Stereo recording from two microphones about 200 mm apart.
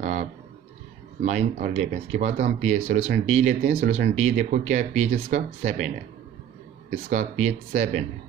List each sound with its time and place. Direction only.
0.0 s a sound: 35° right (ahead or behind)
1.2 s speech: 35° right (ahead or behind)
7.1 s speech: 35° right (ahead or behind)